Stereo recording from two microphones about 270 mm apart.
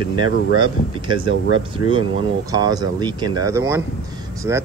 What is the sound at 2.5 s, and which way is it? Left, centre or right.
Speech, centre.